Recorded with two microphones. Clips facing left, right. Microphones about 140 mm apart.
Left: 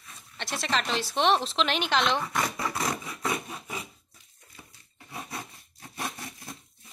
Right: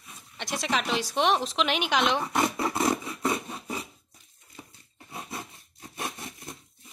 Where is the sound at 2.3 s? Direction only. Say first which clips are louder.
Right 4 dB; 25° right (ahead or behind).